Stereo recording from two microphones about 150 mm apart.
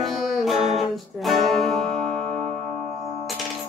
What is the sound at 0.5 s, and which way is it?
Music, 40° right (ahead or behind).